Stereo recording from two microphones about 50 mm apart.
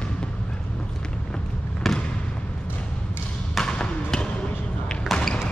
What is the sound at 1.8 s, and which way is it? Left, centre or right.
Basketball bounce, centre.